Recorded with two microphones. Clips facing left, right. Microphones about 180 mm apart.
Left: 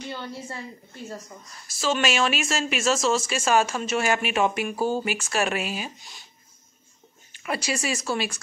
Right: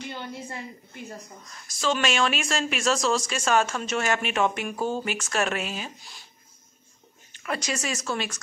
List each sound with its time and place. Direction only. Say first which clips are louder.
0.5 s a woman's voice: left 1 dB; 15° right (ahead or behind)
1.4 s speech: right 1 dB; 5° left (ahead or behind)
7.3 s speech: left 2 dB; 10° left (ahead or behind)